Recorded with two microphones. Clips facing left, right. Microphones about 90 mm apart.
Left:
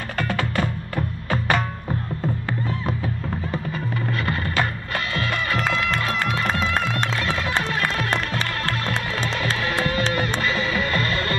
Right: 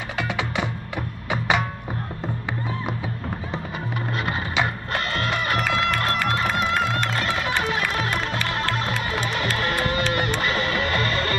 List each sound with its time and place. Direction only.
0.2 s music: 15° right (ahead or behind)
7.2 s music: 10° right (ahead or behind)
8.9 s music: 10° right (ahead or behind)
10.2 s music: 65° right (ahead or behind)